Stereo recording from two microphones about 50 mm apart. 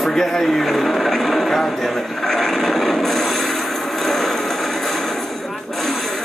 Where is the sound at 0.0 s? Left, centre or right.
Centre.